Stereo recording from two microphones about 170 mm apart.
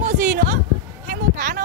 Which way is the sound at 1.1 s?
60° right (ahead or behind).